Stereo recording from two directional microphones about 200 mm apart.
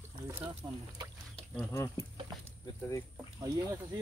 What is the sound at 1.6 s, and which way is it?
Speech, 10° left (ahead or behind).